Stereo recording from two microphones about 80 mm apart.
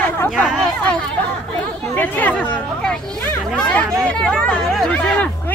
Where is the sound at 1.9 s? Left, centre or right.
Left.